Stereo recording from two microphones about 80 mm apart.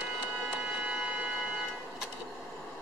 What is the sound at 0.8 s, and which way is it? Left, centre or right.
Music, centre.